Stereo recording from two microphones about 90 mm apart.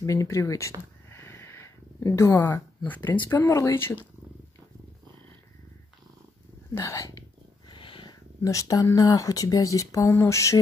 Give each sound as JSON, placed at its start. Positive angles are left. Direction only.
{"t": 0.0, "sound": "speech", "side_deg": 40}
{"t": 1.1, "sound": "wheeze", "side_deg": 30}
{"t": 2.0, "sound": "speech", "side_deg": 35}
{"t": 2.8, "sound": "speech", "side_deg": 20}
{"t": 3.3, "sound": "speech", "side_deg": 35}
{"t": 6.7, "sound": "purr", "side_deg": 35}
{"t": 8.4, "sound": "speech", "side_deg": 40}